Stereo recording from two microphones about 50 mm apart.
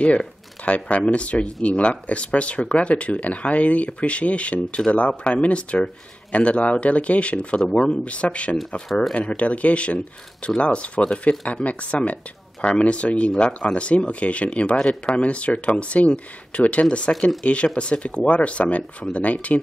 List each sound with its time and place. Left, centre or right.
0.0 s speech: left